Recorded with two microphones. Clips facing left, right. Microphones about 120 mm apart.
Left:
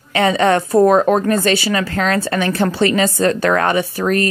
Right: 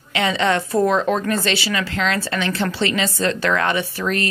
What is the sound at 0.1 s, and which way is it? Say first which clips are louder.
A woman's voice: left 5 dB; 45° left (ahead or behind).